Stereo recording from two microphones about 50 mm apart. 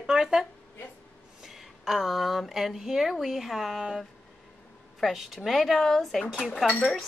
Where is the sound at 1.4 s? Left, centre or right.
Centre.